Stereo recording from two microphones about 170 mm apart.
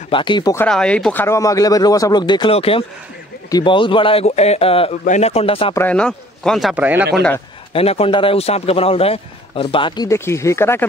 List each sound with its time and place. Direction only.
0.1 s speech: 30° left (ahead or behind)
0.6 s a man's voice: 5° left (ahead or behind); by 5.8 s 35° left (ahead or behind)
5.8 s a man's voice: 5° left (ahead or behind)
6.7 s a man's voice: 10° right (ahead or behind)
7.7 s a man's voice: 35° left (ahead or behind)
10.0 s speech: 15° left (ahead or behind)